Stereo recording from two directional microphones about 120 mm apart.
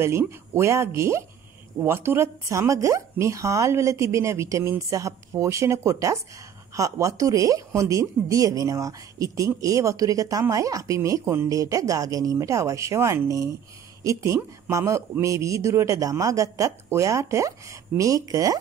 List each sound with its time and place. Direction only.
0.0 s speech: 20° right (ahead or behind)